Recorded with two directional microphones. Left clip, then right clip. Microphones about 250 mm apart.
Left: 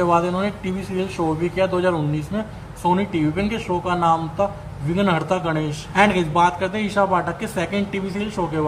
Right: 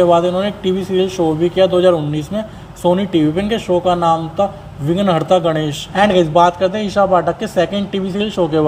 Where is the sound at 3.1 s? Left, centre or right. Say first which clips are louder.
Right 7 dB; centre.